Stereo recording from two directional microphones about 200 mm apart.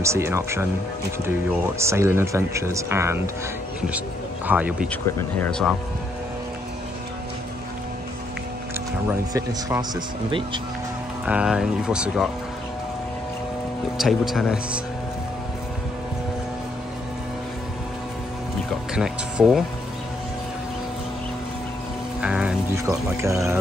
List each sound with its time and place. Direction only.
0.0 s speech: 15° right (ahead or behind)
1.8 s speech: 15° right (ahead or behind)
4.5 s speech: 5° right (ahead or behind)
4.8 s speech: 5° left (ahead or behind)
9.3 s speech: 20° right (ahead or behind)
11.2 s speech: 5° right (ahead or behind)
13.9 s speech: centre (ahead or behind)
18.9 s speech: 5° right (ahead or behind)
22.2 s music: 5° right (ahead or behind)
22.8 s speech: 15° right (ahead or behind)